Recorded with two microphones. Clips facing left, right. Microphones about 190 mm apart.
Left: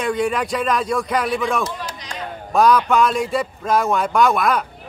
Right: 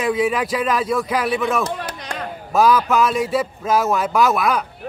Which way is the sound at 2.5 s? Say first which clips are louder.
Even; 5° right (ahead or behind).